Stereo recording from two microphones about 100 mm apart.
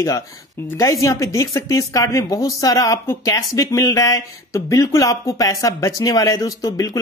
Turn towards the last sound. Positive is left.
turn(degrees=40)  # may be behind; listen again after turning